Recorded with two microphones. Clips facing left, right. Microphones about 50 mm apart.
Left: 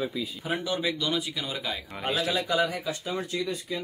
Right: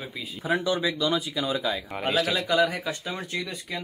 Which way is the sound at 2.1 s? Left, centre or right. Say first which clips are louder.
Right 2 dB; right.